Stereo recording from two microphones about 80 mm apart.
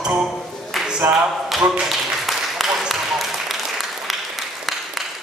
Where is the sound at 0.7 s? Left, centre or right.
Centre.